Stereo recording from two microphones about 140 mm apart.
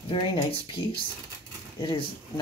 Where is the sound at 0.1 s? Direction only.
40° left (ahead or behind).